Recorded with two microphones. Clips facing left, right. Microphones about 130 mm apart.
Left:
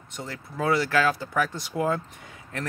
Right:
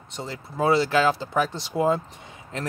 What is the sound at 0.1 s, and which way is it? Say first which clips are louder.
Speech: right 2 dB; 20° right (ahead or behind).